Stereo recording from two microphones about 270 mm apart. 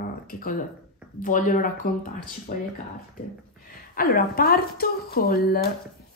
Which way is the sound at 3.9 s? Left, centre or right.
Left.